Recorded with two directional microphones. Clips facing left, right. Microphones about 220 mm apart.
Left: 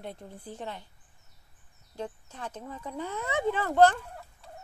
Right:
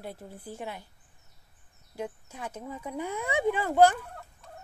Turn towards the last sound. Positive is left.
turn(degrees=-10)  # may be behind; listen again after turning